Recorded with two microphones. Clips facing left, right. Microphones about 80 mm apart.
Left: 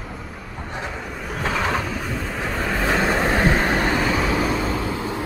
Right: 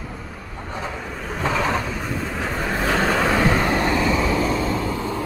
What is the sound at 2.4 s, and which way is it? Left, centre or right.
Vehicle, centre.